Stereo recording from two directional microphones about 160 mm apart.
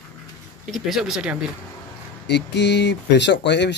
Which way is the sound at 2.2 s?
90° left.